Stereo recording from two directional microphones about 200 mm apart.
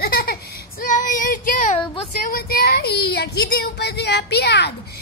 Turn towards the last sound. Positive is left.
turn(degrees=55)  # may be behind; listen again after turning